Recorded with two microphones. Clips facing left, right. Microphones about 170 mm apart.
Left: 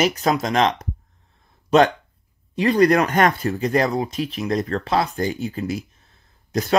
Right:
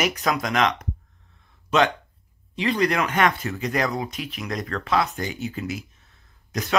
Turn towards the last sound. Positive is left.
turn(degrees=30)  # may be behind; listen again after turning